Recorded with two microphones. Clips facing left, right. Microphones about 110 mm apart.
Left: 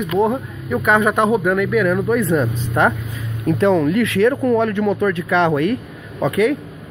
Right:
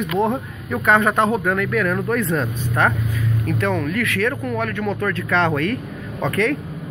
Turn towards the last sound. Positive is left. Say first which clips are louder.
# left 4 dB
turn(degrees=10)  # may be behind; listen again after turning